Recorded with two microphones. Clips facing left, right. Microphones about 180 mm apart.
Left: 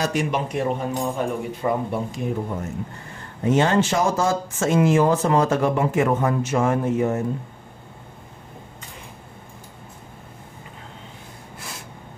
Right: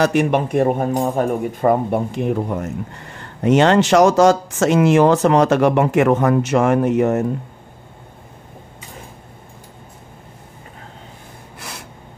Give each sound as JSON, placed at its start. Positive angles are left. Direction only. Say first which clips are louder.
{"t": 0.0, "sound": "speech", "louder": "right 7 dB", "side_deg": -60}